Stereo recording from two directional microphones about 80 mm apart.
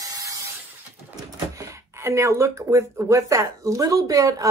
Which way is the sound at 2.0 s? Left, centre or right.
Right.